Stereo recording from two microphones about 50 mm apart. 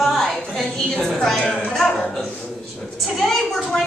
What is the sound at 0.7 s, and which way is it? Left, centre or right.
A woman's voice, centre.